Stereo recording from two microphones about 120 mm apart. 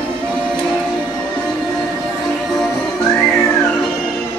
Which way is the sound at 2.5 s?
5° left (ahead or behind).